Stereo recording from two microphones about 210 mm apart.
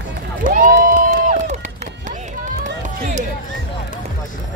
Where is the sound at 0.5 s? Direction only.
40° right (ahead or behind).